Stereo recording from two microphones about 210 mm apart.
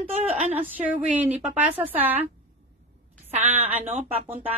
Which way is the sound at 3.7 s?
30° right (ahead or behind).